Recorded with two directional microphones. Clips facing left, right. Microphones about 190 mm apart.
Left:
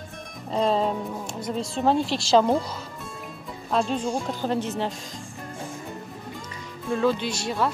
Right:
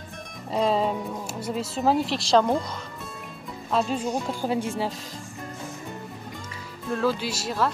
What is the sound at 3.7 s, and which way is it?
Speech, 5° right (ahead or behind).